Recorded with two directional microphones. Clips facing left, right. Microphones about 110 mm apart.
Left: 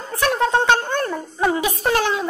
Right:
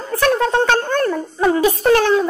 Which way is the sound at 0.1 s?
15° left (ahead or behind).